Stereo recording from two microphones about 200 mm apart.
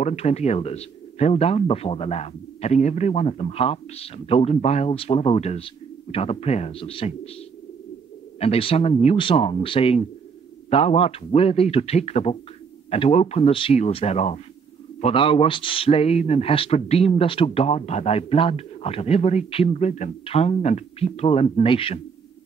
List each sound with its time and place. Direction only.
0.0 s a man's voice: 30° left (ahead or behind)
8.4 s a man's voice: 30° left (ahead or behind)